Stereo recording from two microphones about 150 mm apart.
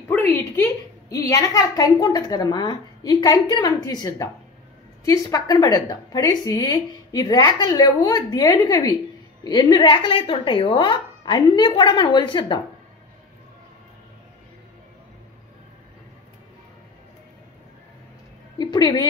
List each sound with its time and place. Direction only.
0.1 s a woman's voice: 15° left (ahead or behind); by 12.5 s 30° left (ahead or behind)
18.6 s a woman's voice: 25° left (ahead or behind)